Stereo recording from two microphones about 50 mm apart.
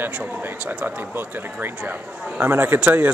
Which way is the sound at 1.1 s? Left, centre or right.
Right.